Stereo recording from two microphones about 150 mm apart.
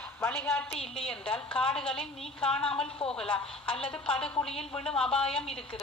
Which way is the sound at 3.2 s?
35° left (ahead or behind).